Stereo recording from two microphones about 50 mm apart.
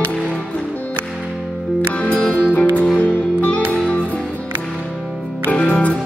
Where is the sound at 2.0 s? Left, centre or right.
Left.